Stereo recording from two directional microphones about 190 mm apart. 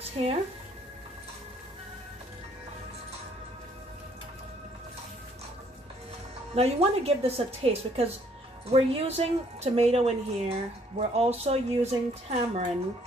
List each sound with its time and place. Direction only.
0.2 s speech: 30° right (ahead or behind)
6.5 s a woman's voice: 30° right (ahead or behind)